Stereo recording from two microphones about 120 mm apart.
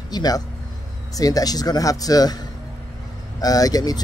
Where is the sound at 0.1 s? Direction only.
35° left (ahead or behind).